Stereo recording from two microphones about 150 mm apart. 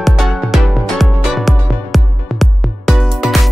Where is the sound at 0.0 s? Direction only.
Centre (ahead or behind).